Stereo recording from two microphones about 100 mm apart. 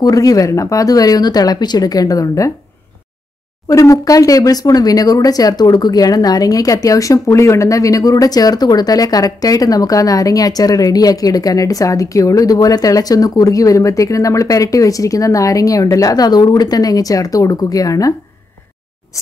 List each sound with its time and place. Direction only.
0.0 s speech: 35° left (ahead or behind)
3.6 s speech: 35° left (ahead or behind)